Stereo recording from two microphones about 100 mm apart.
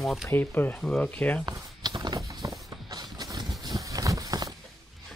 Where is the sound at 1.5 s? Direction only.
45° right (ahead or behind).